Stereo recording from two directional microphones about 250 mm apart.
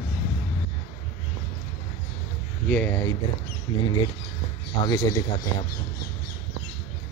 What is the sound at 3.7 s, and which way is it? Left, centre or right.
Speech, centre.